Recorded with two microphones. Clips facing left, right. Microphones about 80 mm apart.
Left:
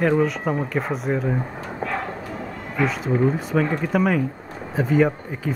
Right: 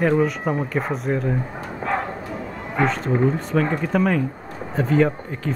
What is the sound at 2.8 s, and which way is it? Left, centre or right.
Speech, centre.